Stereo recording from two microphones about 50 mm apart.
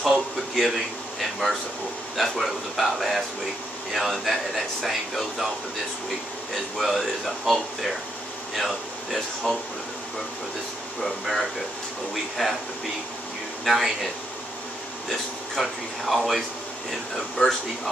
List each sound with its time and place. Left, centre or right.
0.0 s speech: centre
6.5 s speech: centre
11.0 s speech: centre
13.7 s speech: centre
15.0 s speech: centre
17.4 s speech: centre